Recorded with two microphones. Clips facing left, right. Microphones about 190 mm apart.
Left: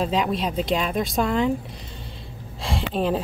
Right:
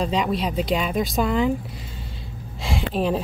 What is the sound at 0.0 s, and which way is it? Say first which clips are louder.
A woman's voice: even; centre (ahead or behind).